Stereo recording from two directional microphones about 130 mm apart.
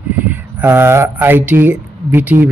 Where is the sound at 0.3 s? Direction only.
15° right (ahead or behind).